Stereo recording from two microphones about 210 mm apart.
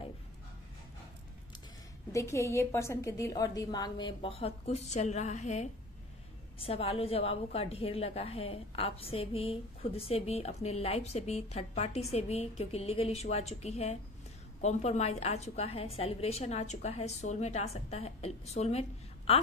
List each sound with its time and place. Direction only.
2.1 s a woman's voice: 15° left (ahead or behind); by 19.4 s 30° left (ahead or behind)